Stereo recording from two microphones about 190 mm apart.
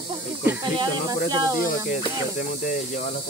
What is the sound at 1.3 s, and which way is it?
Speech, 20° right (ahead or behind).